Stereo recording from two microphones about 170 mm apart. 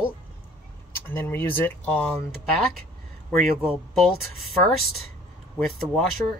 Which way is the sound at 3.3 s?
Centre (ahead or behind).